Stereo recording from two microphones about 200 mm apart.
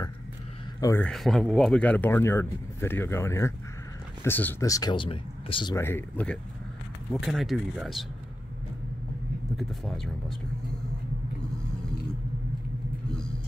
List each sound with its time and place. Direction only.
0.7 s speech: 15° left (ahead or behind)
1.0 s speech: centre (ahead or behind); by 5.8 s 25° left (ahead or behind)
5.8 s speech: 10° left (ahead or behind)
9.6 s speech: centre (ahead or behind)